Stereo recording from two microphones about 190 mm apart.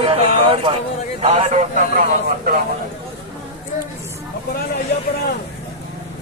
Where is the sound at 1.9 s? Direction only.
50° right (ahead or behind).